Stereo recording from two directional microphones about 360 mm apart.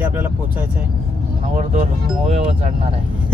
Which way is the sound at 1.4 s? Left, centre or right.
Centre.